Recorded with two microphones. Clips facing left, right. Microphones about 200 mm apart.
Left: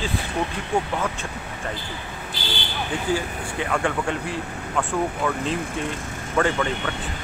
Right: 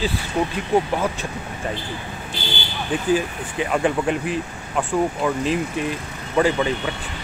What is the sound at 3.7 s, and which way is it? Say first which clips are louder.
Speech: right 4 dB; 20° right (ahead or behind).